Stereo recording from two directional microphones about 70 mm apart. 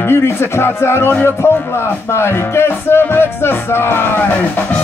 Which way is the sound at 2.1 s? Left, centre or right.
Left.